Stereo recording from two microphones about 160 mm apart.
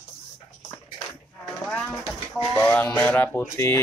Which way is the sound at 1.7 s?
10° left (ahead or behind).